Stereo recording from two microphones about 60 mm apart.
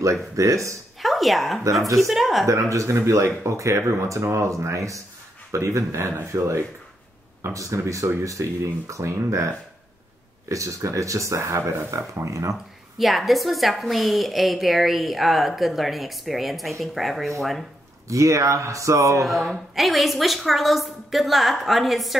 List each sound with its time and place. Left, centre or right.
0.0 s speech: right
1.0 s a woman's voice: centre
2.4 s speech: right
12.9 s a woman's voice: centre
18.0 s speech: right
19.2 s a woman's voice: centre